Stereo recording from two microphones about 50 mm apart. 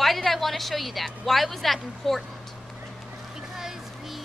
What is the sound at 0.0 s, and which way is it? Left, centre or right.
A woman's voice, centre.